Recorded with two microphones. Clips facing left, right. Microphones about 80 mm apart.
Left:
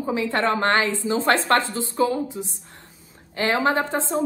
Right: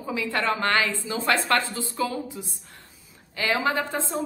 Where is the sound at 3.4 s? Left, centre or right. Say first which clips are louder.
Left 4 dB; left.